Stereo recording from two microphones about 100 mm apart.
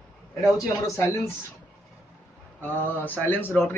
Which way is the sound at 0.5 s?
30° left (ahead or behind).